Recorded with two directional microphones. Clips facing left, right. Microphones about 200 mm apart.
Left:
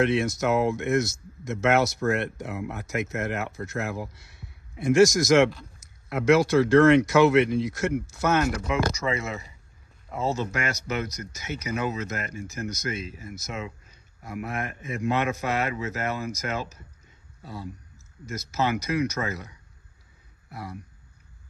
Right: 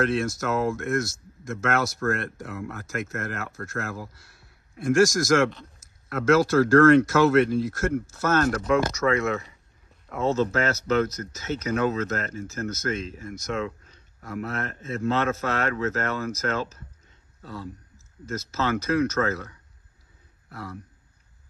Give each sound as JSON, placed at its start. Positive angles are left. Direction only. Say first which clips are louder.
{"t": 0.0, "sound": "speech", "louder": "left 2 dB", "side_deg": 20}
{"t": 4.7, "sound": "a man's voice", "louder": "left 2 dB", "side_deg": 20}